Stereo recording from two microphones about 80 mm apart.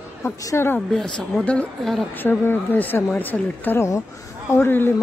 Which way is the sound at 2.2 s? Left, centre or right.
Left.